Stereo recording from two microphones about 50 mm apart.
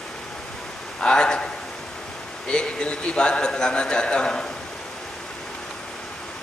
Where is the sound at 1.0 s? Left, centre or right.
Centre.